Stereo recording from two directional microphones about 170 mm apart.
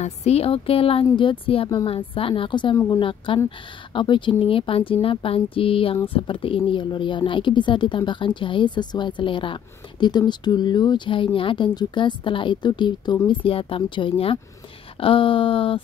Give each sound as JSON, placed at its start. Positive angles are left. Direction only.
{"t": 0.0, "sound": "speech", "side_deg": 40}